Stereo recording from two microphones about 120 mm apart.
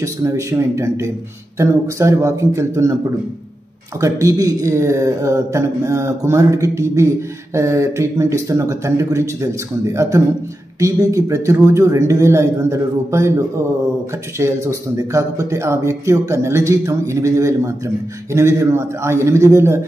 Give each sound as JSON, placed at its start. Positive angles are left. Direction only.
{"t": 0.0, "sound": "speech", "side_deg": -25}
{"t": 4.0, "sound": "speech", "side_deg": -25}